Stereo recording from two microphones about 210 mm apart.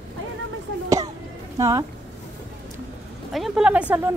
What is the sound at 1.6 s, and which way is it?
Speech, 15° right (ahead or behind).